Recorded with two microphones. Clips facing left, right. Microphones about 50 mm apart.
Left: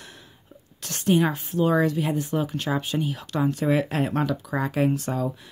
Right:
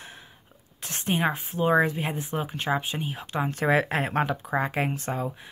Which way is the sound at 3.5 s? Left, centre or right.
Right.